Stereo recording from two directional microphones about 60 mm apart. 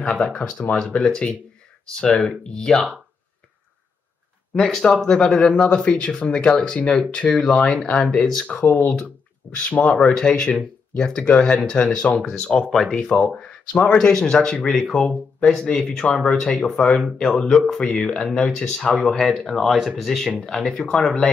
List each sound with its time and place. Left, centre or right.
0.1 s speech: centre
4.6 s speech: centre
8.6 s speech: left